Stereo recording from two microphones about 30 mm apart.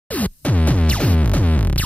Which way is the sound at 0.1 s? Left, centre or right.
Left.